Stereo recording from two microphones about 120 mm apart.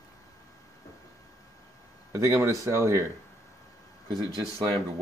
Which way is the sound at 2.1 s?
20° right (ahead or behind).